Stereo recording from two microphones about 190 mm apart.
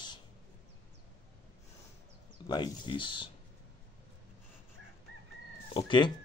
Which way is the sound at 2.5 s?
25° left (ahead or behind).